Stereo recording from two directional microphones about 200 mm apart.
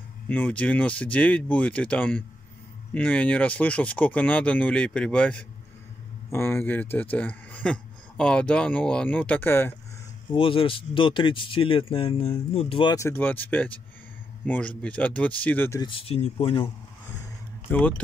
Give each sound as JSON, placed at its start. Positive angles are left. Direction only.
{"t": 0.3, "sound": "speech", "side_deg": 10}
{"t": 10.3, "sound": "speech", "side_deg": 25}
{"t": 15.8, "sound": "speech", "side_deg": 25}
{"t": 17.6, "sound": "speech", "side_deg": 5}